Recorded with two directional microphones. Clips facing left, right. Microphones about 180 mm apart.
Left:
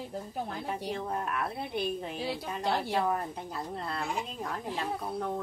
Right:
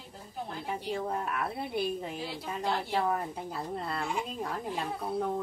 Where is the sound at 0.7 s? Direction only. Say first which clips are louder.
Right 4 dB; centre (ahead or behind).